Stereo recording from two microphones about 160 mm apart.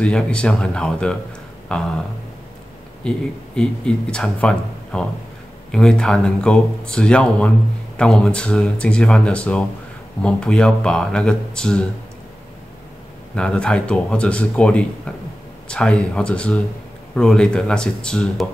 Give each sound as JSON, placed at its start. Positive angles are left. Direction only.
{"t": 0.0, "sound": "speech", "side_deg": 5}
{"t": 3.0, "sound": "speech", "side_deg": 5}
{"t": 13.4, "sound": "speech", "side_deg": 5}